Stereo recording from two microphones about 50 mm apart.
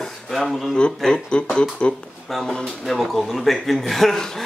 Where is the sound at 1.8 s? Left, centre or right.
Left.